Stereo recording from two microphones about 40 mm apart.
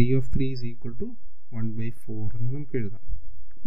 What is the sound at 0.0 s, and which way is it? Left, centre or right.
Speech, left.